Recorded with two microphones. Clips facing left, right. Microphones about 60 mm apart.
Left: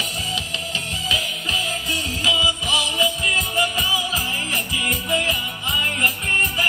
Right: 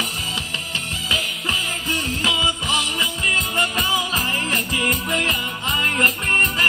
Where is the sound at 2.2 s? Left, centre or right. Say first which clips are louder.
Left 2 dB; right.